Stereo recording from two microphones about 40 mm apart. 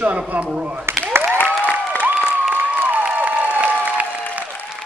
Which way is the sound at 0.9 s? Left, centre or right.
Right.